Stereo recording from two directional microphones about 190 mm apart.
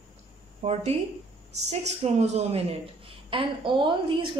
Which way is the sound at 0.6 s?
35° right (ahead or behind).